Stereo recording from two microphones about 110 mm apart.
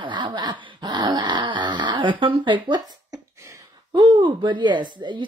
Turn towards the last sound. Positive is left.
turn(degrees=-45)  # may be behind; listen again after turning